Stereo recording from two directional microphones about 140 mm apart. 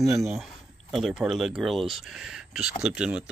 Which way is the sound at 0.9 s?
Centre (ahead or behind).